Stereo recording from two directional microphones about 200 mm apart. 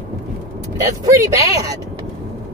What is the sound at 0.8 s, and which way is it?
Speech, 15° right (ahead or behind).